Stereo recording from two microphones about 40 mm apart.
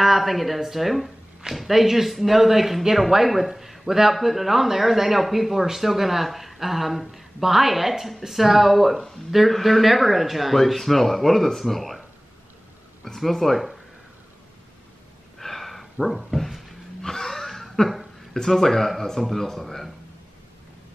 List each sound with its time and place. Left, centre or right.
0.0 s speech: centre
13.0 s speech: centre
15.3 s a sound: centre
17.0 s wheeze: centre
18.3 s speech: centre